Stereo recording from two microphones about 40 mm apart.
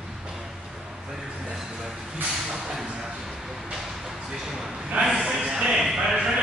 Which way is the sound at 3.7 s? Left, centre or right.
Centre.